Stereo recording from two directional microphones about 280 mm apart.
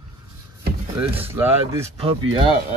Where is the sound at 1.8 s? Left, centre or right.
Centre.